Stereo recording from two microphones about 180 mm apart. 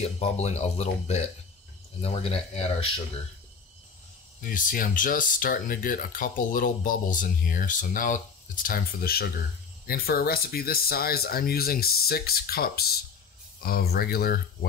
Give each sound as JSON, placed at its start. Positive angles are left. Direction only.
{"t": 0.0, "sound": "speech", "side_deg": 35}
{"t": 4.4, "sound": "speech", "side_deg": 50}